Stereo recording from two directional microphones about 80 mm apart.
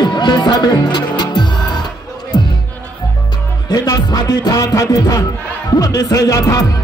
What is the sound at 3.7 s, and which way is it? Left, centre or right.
Music, left.